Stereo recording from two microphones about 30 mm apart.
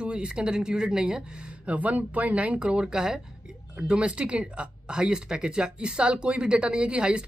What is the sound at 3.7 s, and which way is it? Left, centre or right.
Speech, right.